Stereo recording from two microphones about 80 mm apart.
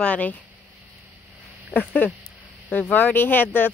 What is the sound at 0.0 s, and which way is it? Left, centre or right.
Speech, centre.